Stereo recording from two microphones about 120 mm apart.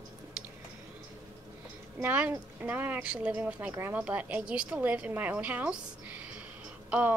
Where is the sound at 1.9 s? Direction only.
15° right (ahead or behind).